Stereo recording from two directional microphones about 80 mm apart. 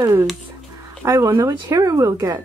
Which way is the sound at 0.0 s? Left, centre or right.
Right.